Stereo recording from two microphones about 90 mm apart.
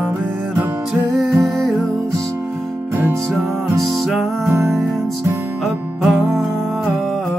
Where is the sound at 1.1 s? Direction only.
Centre (ahead or behind).